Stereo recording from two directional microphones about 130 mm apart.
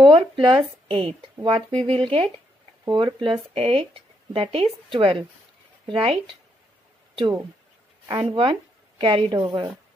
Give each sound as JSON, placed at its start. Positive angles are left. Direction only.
{"t": 0.0, "sound": "speech", "side_deg": -40}
{"t": 8.1, "sound": "speech", "side_deg": -35}
{"t": 9.4, "sound": "a woman's voice", "side_deg": -30}